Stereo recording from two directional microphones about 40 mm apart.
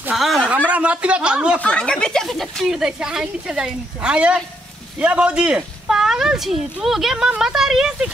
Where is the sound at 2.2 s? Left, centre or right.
Centre.